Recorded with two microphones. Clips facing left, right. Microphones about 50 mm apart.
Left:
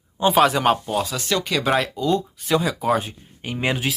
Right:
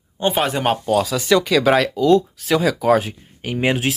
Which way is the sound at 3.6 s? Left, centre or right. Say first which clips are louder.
Right 4 dB; right.